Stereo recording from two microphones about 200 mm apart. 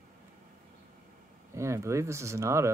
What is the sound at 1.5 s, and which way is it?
Speech, 15° right (ahead or behind).